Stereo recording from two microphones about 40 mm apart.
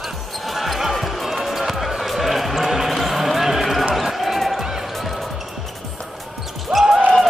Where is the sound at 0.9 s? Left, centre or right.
Centre.